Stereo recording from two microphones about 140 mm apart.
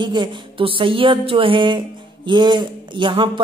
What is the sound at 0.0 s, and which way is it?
Speech, 35° right (ahead or behind).